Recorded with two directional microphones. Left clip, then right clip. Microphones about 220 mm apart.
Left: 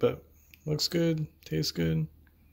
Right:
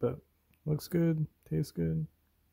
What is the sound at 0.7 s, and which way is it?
Speech, 40° right (ahead or behind).